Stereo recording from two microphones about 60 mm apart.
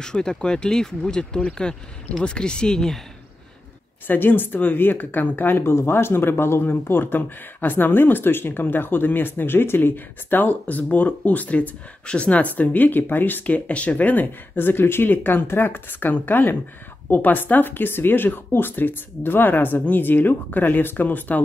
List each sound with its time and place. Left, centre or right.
0.0 s speech: centre
4.1 s speech: left
5.6 s speech: left